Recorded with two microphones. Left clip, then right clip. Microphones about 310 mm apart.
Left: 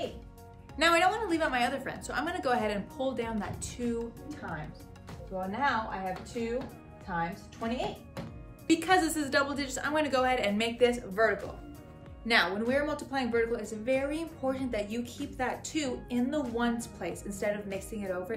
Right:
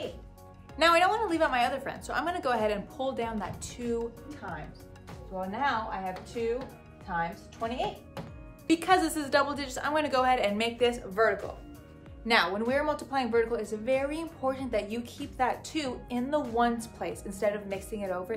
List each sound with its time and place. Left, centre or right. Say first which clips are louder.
0.7 s a woman's voice: right 2 dB; centre
4.0 s a woman's voice: right 2 dB; centre